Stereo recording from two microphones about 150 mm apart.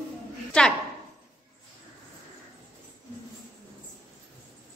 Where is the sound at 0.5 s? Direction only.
5° left (ahead or behind).